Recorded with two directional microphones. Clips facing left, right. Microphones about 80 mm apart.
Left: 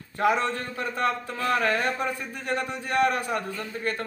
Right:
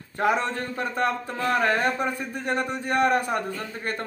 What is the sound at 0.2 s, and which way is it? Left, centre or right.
Speech, right.